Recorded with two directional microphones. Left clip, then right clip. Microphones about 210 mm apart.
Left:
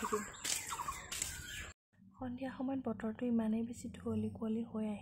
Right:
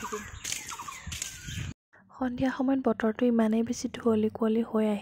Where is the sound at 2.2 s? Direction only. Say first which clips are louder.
Right 13 dB; 35° right (ahead or behind).